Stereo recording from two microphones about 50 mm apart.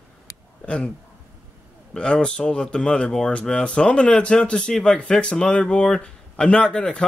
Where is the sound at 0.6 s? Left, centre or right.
Left.